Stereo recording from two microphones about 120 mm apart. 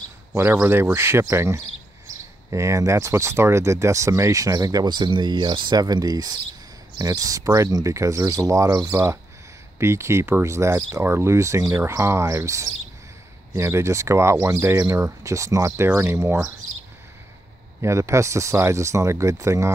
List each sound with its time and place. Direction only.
0.3 s speech: 20° right (ahead or behind)
17.8 s speech: 25° right (ahead or behind)